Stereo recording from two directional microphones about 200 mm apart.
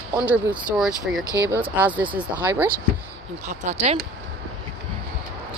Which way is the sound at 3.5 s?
35° right (ahead or behind).